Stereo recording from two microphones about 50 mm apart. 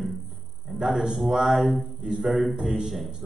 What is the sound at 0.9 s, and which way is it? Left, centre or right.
Speech, centre.